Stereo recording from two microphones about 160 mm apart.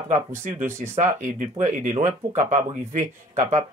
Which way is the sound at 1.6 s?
45° right (ahead or behind).